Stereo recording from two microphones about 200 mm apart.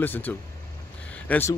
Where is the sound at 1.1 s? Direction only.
10° left (ahead or behind).